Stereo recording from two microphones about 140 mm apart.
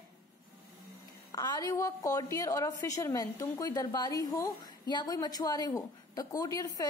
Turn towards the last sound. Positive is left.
turn(degrees=25)  # may be behind; listen again after turning